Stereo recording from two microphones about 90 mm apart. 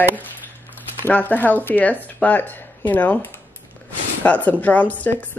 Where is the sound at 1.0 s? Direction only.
20° left (ahead or behind).